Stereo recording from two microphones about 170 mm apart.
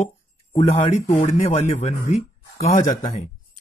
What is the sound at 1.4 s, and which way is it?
Speech, 35° left (ahead or behind).